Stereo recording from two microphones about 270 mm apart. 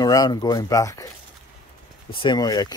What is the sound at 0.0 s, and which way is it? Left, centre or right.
Speech, centre.